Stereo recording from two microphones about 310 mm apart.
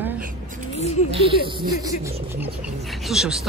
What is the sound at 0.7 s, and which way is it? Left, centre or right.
Speech, left.